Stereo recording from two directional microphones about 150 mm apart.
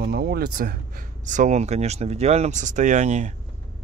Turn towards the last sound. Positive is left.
turn(degrees=-50)  # may be behind; listen again after turning